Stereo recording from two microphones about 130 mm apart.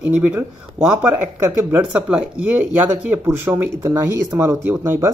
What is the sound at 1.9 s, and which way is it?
Speech, 5° right (ahead or behind).